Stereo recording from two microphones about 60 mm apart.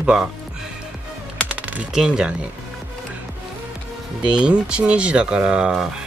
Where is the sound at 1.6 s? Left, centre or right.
Right.